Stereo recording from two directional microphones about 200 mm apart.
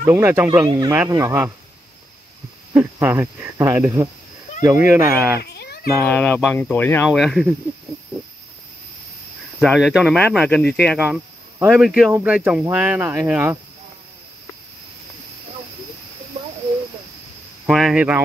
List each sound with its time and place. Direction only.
0.0 s speech: 15° right (ahead or behind)
2.7 s speech: 10° right (ahead or behind)
5.4 s baby cry: 55° left (ahead or behind)
6.0 s speech: 5° left (ahead or behind)
9.6 s speech: centre (ahead or behind)
17.6 s speech: centre (ahead or behind)